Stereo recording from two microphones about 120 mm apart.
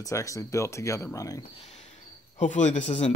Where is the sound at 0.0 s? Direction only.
25° left (ahead or behind).